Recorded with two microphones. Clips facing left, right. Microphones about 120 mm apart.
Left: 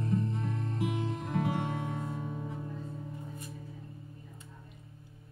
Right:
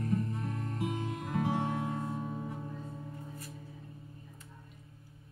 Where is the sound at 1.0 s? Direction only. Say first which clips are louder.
Left 1 dB; 5° right (ahead or behind).